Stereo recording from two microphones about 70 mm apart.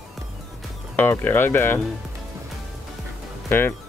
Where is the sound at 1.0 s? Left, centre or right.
Left.